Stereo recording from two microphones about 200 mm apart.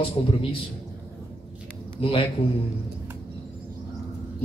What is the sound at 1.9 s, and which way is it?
Speech, 25° left (ahead or behind).